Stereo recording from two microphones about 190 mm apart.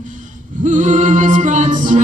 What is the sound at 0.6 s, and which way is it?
Music, 40° right (ahead or behind).